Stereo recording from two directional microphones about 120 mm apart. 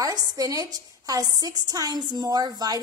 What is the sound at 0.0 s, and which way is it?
A woman's voice, 30° right (ahead or behind).